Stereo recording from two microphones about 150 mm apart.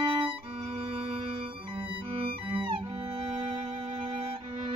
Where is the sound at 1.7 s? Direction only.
35° right (ahead or behind).